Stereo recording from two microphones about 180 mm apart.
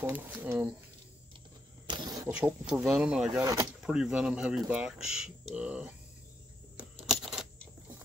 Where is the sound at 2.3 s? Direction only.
5° right (ahead or behind).